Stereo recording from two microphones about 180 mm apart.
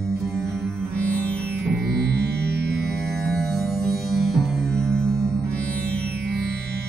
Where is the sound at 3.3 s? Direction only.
Centre (ahead or behind).